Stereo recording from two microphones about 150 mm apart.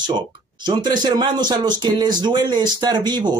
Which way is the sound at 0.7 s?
30° right (ahead or behind).